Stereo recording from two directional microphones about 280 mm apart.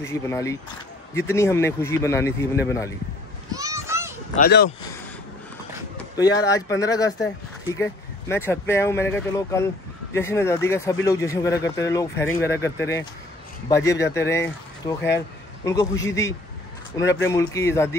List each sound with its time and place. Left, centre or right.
0.0 s speech: centre
3.5 s children playing: centre
4.4 s speech: left
6.1 s a man's voice: centre